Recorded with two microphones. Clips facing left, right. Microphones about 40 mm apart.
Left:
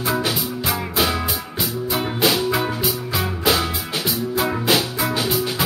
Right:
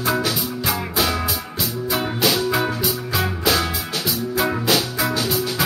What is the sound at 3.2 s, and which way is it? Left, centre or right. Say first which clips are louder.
Music: even; centre.